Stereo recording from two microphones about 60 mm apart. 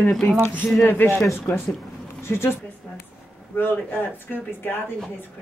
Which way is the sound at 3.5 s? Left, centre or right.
Left.